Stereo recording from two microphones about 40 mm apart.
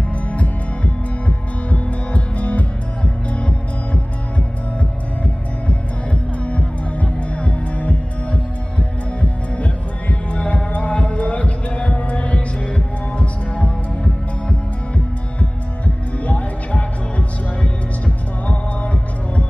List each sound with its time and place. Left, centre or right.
1.2 s music: left
6.4 s music: left
16.3 s music: left